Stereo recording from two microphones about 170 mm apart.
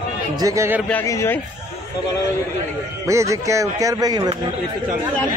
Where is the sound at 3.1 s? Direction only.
20° right (ahead or behind).